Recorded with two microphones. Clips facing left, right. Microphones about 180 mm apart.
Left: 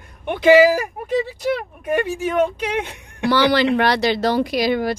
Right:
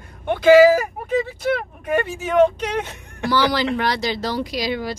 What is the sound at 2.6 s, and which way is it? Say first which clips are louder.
Speech: left 1 dB; 10° left (ahead or behind).